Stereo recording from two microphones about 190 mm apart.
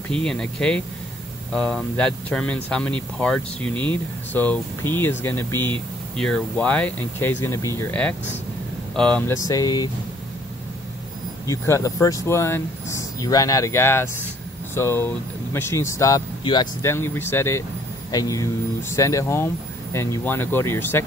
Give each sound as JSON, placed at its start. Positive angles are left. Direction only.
{"t": 0.1, "sound": "speech", "side_deg": 5}
{"t": 9.5, "sound": "speech", "side_deg": 20}
{"t": 11.4, "sound": "speech", "side_deg": 15}